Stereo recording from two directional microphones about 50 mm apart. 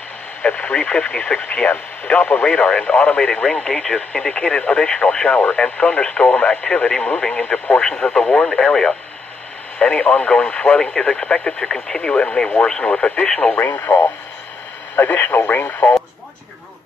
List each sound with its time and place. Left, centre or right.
0.4 s speech: left
5.3 s speech: left
9.8 s speech: left
13.6 s speech: left